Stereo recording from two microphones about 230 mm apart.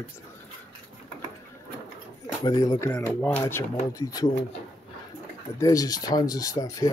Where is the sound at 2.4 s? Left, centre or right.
Centre.